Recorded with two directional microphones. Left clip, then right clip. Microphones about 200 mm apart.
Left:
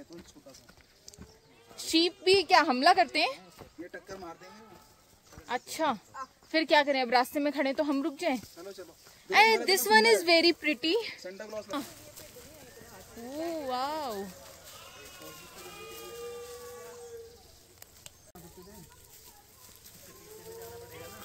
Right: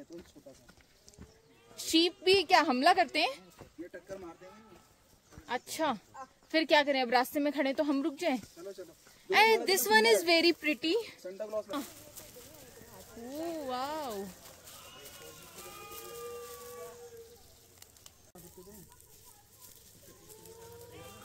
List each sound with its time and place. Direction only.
1.8 s a woman's voice: 10° right (ahead or behind)
3.8 s a sound: 20° left (ahead or behind)
5.5 s a woman's voice: 10° right (ahead or behind)
11.2 s speech: 20° left (ahead or behind)
13.3 s a woman's voice: 10° right (ahead or behind)